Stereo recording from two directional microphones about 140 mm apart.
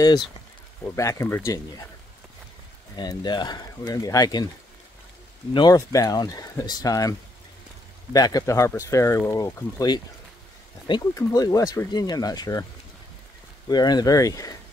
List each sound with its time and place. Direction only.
0.9 s speech: 20° left (ahead or behind)
3.0 s speech: 30° left (ahead or behind)
5.5 s speech: 35° left (ahead or behind)
13.7 s speech: 30° left (ahead or behind)